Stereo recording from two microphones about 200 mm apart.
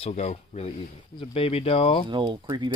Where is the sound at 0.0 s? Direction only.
30° left (ahead or behind).